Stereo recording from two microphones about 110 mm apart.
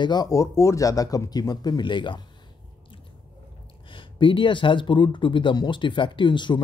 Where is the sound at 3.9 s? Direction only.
50° left (ahead or behind).